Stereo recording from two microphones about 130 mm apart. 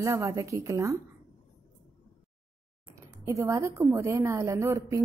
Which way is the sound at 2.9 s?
25° right (ahead or behind).